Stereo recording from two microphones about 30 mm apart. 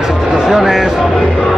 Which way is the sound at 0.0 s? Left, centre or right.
Centre.